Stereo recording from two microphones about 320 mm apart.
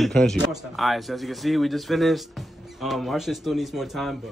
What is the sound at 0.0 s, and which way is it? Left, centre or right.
Speech, centre.